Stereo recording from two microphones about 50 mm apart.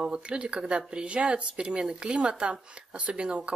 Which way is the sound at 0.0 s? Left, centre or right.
Centre.